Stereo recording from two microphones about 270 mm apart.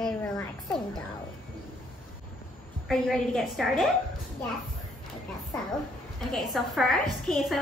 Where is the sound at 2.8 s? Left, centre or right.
Centre.